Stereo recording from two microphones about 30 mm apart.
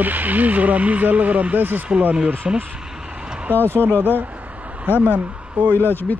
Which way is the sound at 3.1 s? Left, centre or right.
Right.